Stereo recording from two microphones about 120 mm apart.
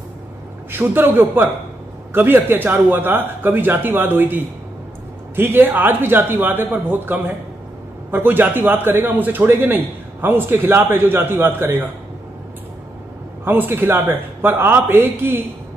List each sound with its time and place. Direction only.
0.7 s a man's voice: 15° right (ahead or behind)
13.4 s a man's voice: 15° right (ahead or behind)